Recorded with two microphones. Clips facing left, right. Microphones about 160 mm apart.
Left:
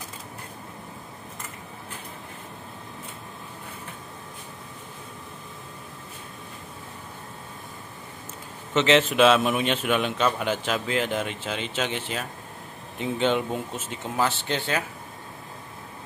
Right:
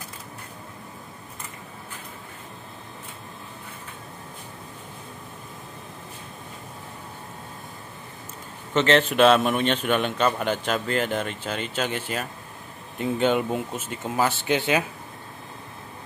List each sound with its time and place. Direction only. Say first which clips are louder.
8.7 s a man's voice: even; centre (ahead or behind)